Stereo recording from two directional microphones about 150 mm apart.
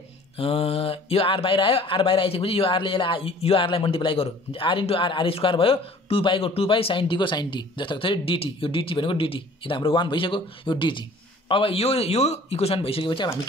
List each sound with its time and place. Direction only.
0.4 s speech: 40° left (ahead or behind)